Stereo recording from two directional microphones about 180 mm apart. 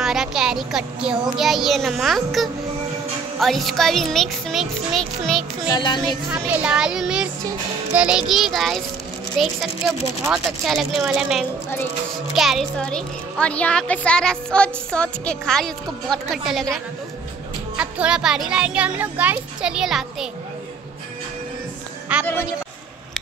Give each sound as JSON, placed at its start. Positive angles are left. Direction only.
{"t": 0.0, "sound": "a woman's voice", "side_deg": 0}
{"t": 5.7, "sound": "speech", "side_deg": 25}
{"t": 6.2, "sound": "a woman's voice", "side_deg": -10}
{"t": 17.7, "sound": "a woman's voice", "side_deg": -5}
{"t": 22.1, "sound": "a sound", "side_deg": -5}